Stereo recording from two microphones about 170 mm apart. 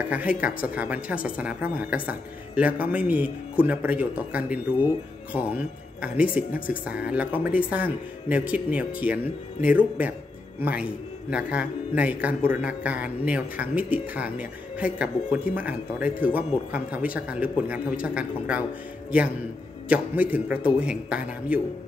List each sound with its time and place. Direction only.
0.1 s a man's voice: 10° right (ahead or behind)
6.5 s speech: 55° left (ahead or behind)
6.8 s a man's voice: 5° right (ahead or behind)
19.9 s a man's voice: 10° right (ahead or behind)